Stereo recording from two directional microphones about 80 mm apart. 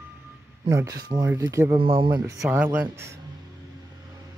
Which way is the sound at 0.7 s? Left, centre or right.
Right.